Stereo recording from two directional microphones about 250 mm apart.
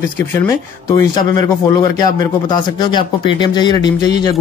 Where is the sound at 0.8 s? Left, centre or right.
Centre.